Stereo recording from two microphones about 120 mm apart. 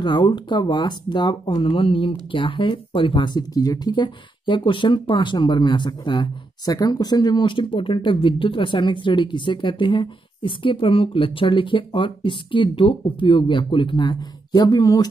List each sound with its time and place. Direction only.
0.0 s speech: 40° left (ahead or behind)